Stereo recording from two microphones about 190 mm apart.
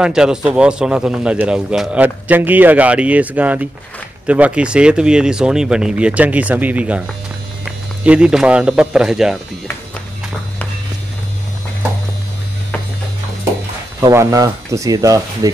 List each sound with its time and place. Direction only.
0.0 s a man's voice: 5° right (ahead or behind)
14.0 s speech: 20° right (ahead or behind)